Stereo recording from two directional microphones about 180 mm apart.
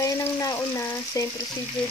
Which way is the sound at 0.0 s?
20° left (ahead or behind).